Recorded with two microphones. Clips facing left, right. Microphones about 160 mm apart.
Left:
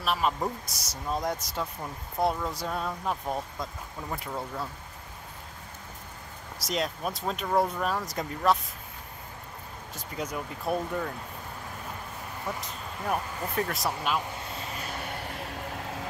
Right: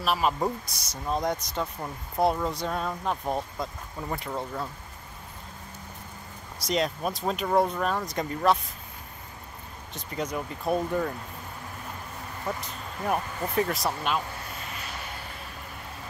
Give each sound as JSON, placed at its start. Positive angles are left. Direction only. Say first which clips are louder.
{"t": 0.0, "sound": "speech", "louder": "right 2 dB", "side_deg": -5}
{"t": 6.6, "sound": "speech", "louder": "right 3 dB", "side_deg": 0}
{"t": 9.9, "sound": "speech", "louder": "right 3 dB", "side_deg": 5}
{"t": 12.5, "sound": "speech", "louder": "right 1 dB", "side_deg": -5}
{"t": 14.8, "sound": "vehicle", "louder": "left 3 dB", "side_deg": 55}